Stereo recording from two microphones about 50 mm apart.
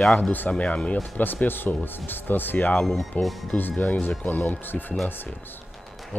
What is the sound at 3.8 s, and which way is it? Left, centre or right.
Speech, left.